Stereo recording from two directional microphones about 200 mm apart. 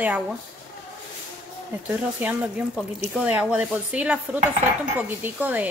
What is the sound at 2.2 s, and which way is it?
A woman's voice, 10° right (ahead or behind).